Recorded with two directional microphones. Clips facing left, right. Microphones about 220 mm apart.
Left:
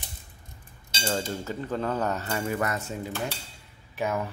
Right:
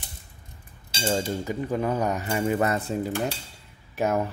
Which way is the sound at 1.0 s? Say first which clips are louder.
Right 4 dB; 15° right (ahead or behind).